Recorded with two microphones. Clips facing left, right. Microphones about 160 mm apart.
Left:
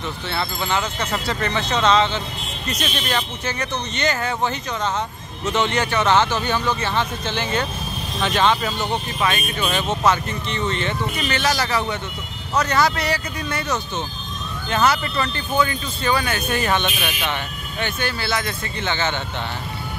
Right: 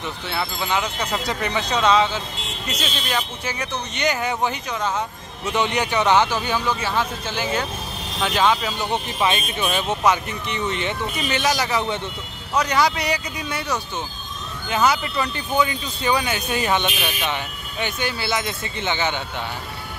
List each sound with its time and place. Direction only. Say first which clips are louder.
0.3 s speech: even; 10° right (ahead or behind)